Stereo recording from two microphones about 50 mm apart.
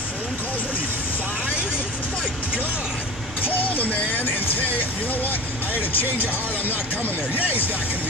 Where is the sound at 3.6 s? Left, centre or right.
Left.